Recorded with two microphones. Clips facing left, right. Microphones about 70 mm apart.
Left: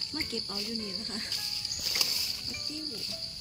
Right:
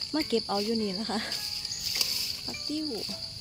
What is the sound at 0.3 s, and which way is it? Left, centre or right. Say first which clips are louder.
Speech: right 10 dB; right.